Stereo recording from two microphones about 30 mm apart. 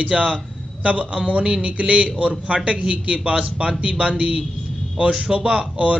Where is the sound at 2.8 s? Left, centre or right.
Right.